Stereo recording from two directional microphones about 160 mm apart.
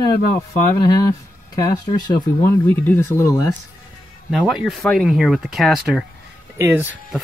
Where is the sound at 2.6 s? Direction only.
15° left (ahead or behind).